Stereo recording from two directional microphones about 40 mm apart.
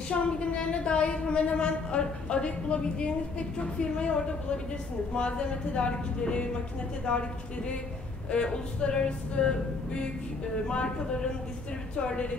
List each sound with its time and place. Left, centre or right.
0.1 s a woman's voice: left